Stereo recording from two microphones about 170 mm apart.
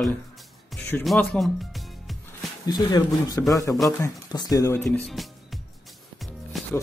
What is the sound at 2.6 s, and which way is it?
Speech, 20° left (ahead or behind).